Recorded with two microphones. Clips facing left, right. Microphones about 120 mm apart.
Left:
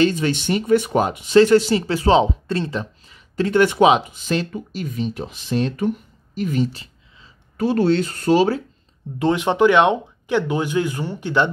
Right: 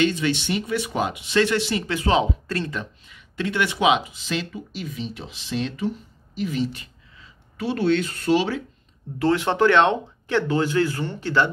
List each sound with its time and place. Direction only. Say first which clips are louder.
0.0 s speech: left 3 dB; 45° left (ahead or behind)
9.2 s speech: left 3 dB; 15° left (ahead or behind)